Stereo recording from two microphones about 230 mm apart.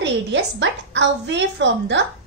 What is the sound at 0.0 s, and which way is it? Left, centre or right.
A woman's voice, right.